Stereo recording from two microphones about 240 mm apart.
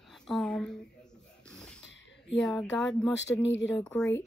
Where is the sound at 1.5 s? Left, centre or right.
Centre.